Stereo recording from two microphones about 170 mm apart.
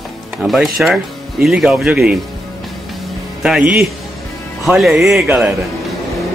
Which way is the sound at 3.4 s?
5° right (ahead or behind).